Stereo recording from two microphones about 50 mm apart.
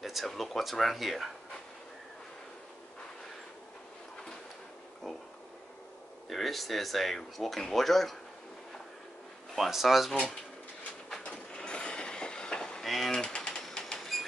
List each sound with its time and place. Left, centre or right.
0.0 s a sound: centre
0.3 s speech: centre
5.1 s speech: centre
6.2 s speech: centre
9.6 s speech: centre
11.2 s train: left
12.8 s a sound: centre
13.1 s pigeon: centre
13.6 s a sound: centre